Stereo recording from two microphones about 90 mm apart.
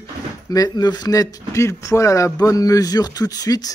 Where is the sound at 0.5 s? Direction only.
45° left (ahead or behind).